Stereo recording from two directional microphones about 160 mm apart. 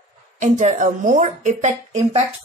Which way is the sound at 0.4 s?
50° right (ahead or behind).